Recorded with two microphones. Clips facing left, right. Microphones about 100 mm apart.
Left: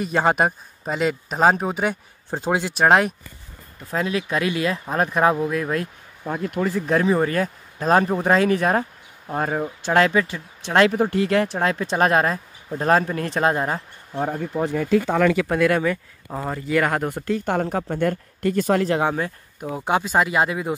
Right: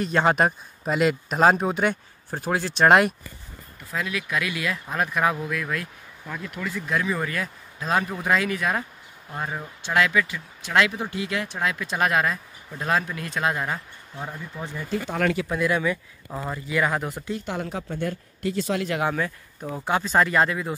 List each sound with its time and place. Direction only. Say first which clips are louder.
0.0 s speech: left 1 dB; 5° left (ahead or behind)
2.3 s speech: left 4 dB; 20° left (ahead or behind)
2.7 s speech: right 1 dB; 5° left (ahead or behind)
3.9 s speech: left 5 dB; 30° left (ahead or behind)
11.4 s speech: left 5 dB; 35° left (ahead or behind)
14.1 s speech: left 11 dB; 55° left (ahead or behind)
15.5 s speech: left 5 dB; 60° left (ahead or behind)
16.4 s speech: left 4 dB; 50° left (ahead or behind); by 19.2 s 30° left (ahead or behind)
19.6 s speech: left 3 dB; 20° left (ahead or behind)